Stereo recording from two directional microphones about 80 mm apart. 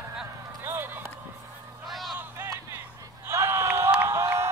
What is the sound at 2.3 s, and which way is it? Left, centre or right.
Music, right.